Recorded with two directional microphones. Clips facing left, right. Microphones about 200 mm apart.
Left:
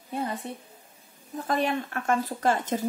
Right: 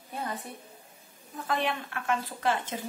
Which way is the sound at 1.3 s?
40° left (ahead or behind).